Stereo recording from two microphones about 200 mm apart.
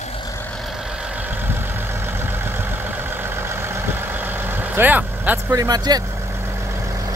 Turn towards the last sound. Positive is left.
turn(degrees=-15)  # may be behind; listen again after turning